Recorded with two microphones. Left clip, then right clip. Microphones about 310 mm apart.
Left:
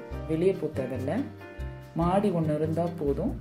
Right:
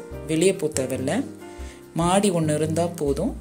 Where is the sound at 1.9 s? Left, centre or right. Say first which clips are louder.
Right 5 dB; right.